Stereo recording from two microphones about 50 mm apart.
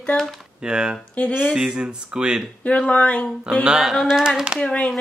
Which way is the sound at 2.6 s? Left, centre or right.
Left.